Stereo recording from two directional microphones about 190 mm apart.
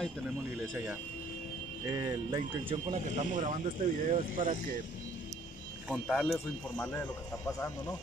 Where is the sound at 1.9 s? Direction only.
20° right (ahead or behind).